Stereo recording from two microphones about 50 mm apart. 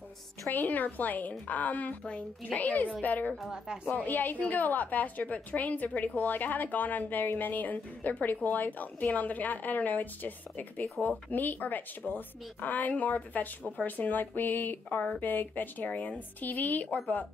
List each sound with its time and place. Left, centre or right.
0.5 s a woman's voice: left
3.4 s a woman's voice: centre
3.8 s a woman's voice: left